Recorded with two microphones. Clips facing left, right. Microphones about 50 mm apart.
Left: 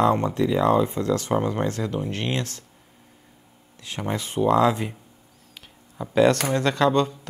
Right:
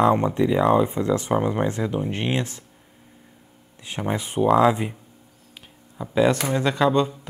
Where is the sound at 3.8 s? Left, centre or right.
Centre.